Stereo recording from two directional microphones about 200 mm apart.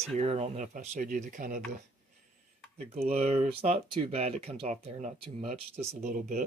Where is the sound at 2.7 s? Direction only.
30° right (ahead or behind).